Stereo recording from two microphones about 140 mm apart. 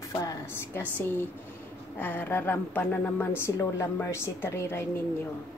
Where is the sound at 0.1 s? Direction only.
25° left (ahead or behind).